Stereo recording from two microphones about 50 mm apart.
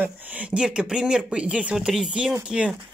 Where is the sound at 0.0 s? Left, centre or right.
Right.